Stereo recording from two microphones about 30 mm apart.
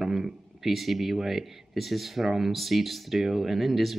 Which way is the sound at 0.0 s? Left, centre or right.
Centre.